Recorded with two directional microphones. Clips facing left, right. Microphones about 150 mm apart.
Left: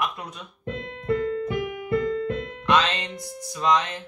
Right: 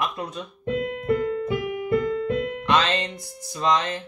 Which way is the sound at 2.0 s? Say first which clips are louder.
Right 1 dB; 35° left (ahead or behind).